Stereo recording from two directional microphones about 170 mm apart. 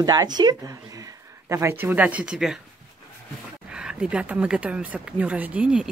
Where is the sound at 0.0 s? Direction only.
20° right (ahead or behind); by 2.6 s 5° right (ahead or behind).